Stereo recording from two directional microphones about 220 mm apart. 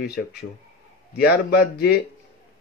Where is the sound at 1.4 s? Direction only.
45° left (ahead or behind).